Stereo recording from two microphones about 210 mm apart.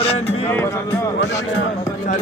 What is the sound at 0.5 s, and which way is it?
Speech, 10° left (ahead or behind).